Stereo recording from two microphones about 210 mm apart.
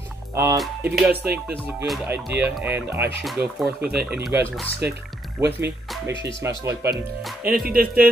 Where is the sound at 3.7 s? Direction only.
50° right (ahead or behind).